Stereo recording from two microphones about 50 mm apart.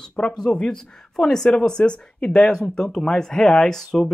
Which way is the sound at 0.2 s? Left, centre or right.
Centre.